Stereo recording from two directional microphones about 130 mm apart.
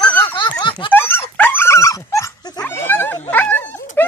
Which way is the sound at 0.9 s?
15° left (ahead or behind).